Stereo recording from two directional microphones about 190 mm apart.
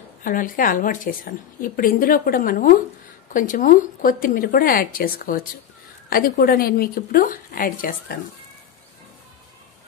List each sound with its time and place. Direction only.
0.2 s a woman's voice: 45° left (ahead or behind)